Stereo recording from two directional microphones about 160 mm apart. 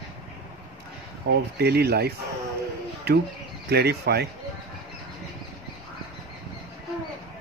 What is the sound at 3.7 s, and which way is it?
Speech, 90° right.